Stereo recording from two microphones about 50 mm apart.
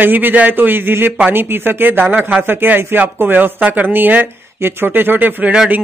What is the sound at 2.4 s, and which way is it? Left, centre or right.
A man's voice, right.